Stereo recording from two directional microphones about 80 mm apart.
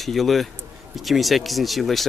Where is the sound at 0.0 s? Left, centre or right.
Centre.